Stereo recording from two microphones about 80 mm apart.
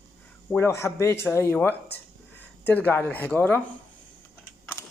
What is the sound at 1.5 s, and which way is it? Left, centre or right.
Speech, left.